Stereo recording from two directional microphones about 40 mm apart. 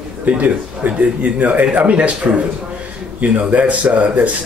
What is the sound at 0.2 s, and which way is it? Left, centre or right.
Speech, right.